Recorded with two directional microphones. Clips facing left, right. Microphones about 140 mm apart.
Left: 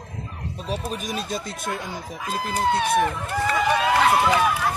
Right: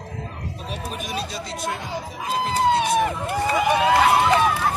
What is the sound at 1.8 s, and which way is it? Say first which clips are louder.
Speech: right 3 dB; 20° right (ahead or behind).